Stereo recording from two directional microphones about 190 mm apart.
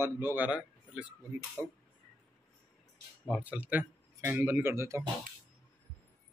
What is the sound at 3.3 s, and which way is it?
Speech, 5° right (ahead or behind).